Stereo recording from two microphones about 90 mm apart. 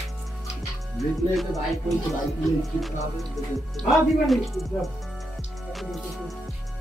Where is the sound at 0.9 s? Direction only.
Centre (ahead or behind).